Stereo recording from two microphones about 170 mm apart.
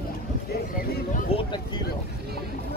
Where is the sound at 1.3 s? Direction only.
25° left (ahead or behind).